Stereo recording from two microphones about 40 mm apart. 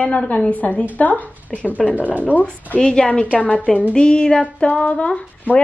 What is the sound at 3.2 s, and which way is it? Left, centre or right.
Speech, left.